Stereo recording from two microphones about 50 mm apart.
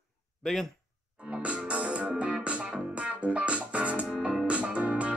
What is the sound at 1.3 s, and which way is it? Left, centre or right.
Music, right.